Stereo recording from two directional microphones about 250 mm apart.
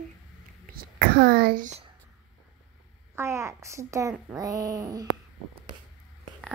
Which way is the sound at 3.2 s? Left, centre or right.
Centre.